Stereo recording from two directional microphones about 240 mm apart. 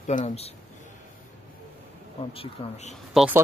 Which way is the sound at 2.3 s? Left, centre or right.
Left.